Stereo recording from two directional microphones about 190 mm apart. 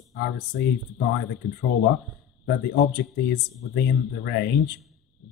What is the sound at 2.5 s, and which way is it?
Speech, 60° left (ahead or behind).